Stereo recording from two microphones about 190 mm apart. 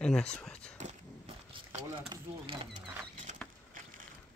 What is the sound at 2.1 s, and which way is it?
Speech, 30° right (ahead or behind).